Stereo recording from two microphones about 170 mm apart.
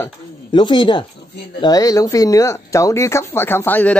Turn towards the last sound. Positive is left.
turn(degrees=10)  # may be behind; listen again after turning